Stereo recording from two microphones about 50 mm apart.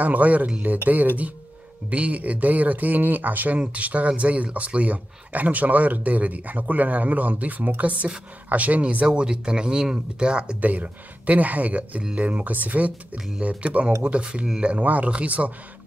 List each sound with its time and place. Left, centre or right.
0.0 s speech: right
9.0 s speech: centre
10.6 s speech: right